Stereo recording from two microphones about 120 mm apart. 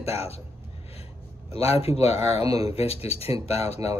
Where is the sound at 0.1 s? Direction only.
60° left (ahead or behind).